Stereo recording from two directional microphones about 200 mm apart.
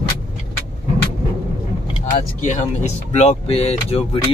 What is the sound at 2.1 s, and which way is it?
Speech, 35° left (ahead or behind).